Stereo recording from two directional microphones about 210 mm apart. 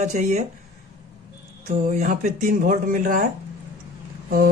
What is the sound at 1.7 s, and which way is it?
Speech, 35° right (ahead or behind).